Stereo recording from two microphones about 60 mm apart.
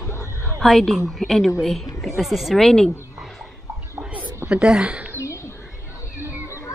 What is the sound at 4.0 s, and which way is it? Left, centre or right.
Whispering, right.